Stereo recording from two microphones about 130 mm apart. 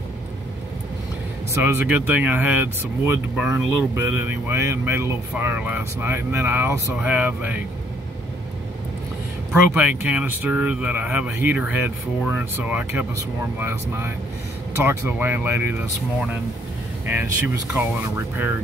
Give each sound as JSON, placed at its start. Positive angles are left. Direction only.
{"t": 1.5, "sound": "speech", "side_deg": -20}
{"t": 9.8, "sound": "speech", "side_deg": -10}
{"t": 17.1, "sound": "speech", "side_deg": -15}